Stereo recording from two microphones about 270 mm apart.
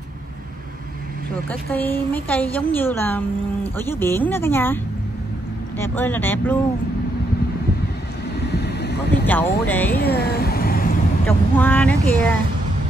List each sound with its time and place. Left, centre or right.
1.5 s a woman's voice: centre
5.8 s a woman's voice: centre
8.4 s vehicle: left
9.2 s a woman's voice: centre
10.0 s vehicle: left
11.2 s speech: centre